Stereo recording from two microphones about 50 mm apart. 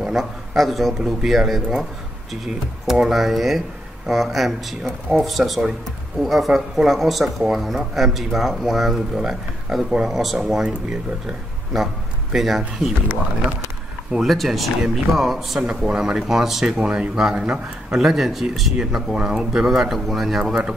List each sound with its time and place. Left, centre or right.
0.0 s speech: centre
10.6 s speech: centre
11.7 s a man's voice: centre
14.2 s speech: centre
16.7 s speech: centre